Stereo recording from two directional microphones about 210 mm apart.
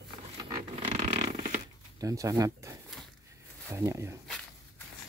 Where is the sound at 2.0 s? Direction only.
15° right (ahead or behind).